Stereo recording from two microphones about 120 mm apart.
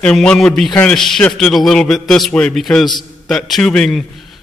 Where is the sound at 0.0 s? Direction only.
10° left (ahead or behind).